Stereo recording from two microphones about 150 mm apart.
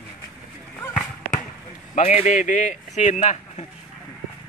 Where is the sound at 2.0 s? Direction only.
45° left (ahead or behind).